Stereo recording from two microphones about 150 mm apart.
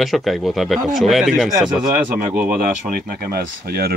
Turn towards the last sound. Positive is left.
turn(degrees=-90)